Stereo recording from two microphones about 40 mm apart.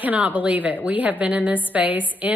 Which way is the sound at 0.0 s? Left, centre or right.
Right.